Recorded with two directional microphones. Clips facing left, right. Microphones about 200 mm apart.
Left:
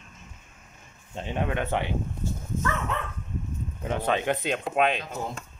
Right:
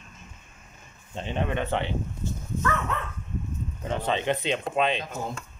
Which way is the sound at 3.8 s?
10° left (ahead or behind).